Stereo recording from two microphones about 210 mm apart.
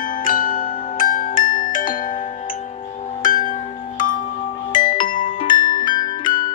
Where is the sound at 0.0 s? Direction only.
40° left (ahead or behind).